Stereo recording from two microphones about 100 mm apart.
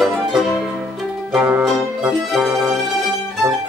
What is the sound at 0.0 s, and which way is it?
Music, centre (ahead or behind).